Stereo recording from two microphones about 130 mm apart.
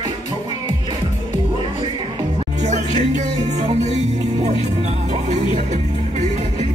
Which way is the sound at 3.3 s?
50° right (ahead or behind).